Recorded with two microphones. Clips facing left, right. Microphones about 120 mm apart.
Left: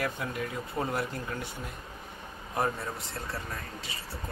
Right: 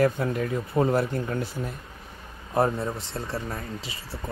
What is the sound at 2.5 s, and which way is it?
Speech, 30° right (ahead or behind).